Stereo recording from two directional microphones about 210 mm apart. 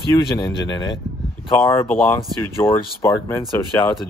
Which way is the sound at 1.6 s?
10° left (ahead or behind).